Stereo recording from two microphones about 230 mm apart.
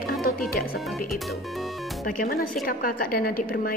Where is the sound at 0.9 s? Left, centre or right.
Centre.